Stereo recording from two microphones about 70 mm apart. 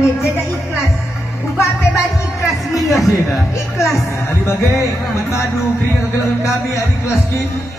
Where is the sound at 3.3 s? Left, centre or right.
Left.